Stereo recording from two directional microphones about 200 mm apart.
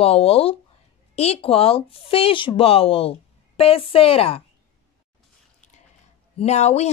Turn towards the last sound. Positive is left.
turn(degrees=35)  # may be behind; listen again after turning